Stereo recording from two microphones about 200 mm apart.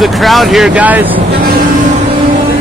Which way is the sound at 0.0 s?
Centre (ahead or behind).